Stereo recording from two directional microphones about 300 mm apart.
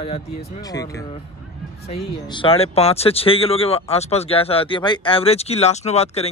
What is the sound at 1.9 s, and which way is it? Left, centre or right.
Speech, centre.